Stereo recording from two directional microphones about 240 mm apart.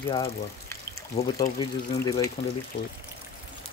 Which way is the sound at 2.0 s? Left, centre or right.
Centre.